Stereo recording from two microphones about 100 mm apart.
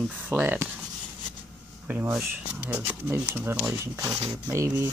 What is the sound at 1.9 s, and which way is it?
Speech, 15° right (ahead or behind).